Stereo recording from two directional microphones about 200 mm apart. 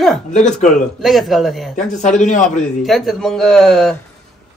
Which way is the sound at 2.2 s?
35° left (ahead or behind).